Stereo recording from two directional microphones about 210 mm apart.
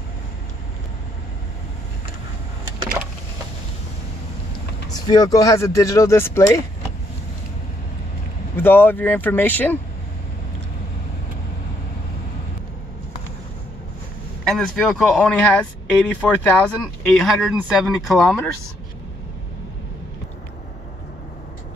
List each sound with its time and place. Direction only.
4.8 s speech: 20° left (ahead or behind)
8.5 s speech: 10° left (ahead or behind)
14.4 s speech: centre (ahead or behind)